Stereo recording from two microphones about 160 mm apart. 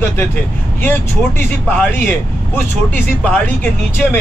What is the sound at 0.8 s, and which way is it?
Speech, 10° left (ahead or behind).